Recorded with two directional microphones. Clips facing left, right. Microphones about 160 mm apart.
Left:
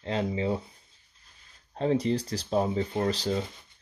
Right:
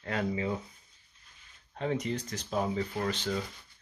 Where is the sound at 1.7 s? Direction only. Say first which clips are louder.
Left 6 dB; 35° left (ahead or behind).